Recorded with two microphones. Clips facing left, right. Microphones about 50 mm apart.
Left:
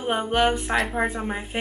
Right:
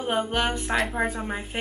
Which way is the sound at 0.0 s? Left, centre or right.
Centre.